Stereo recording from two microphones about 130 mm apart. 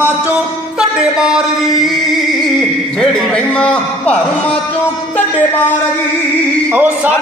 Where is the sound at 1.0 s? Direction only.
5° right (ahead or behind).